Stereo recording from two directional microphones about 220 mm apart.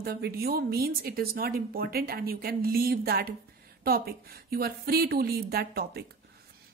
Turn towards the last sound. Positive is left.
turn(degrees=-45)  # may be behind; listen again after turning